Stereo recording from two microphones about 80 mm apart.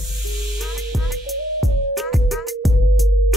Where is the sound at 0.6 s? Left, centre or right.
Centre.